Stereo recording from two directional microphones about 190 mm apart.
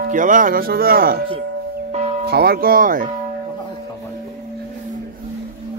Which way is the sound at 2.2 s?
55° right (ahead or behind).